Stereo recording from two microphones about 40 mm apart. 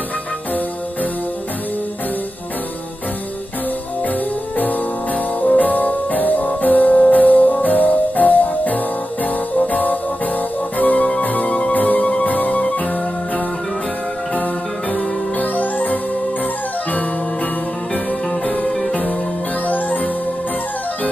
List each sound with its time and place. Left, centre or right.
4.6 s music: left
14.3 s music: left
18.7 s music: centre
19.7 s music: left